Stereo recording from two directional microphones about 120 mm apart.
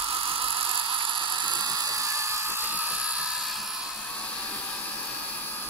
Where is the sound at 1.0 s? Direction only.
40° right (ahead or behind); by 3.7 s centre (ahead or behind).